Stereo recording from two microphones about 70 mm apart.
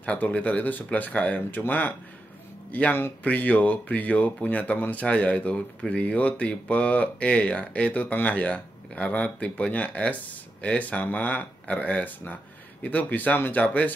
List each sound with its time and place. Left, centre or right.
0.0 s speech: centre